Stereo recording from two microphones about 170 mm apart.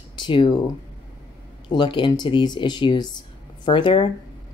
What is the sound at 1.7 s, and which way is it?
Speech, 30° left (ahead or behind).